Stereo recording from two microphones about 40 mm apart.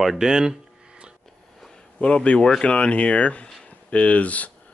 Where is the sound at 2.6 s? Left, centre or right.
Left.